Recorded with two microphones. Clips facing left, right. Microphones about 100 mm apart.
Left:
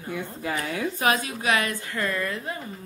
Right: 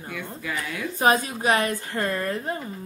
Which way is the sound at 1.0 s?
35° right (ahead or behind).